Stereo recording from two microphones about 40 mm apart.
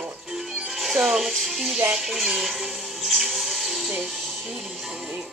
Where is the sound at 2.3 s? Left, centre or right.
Centre.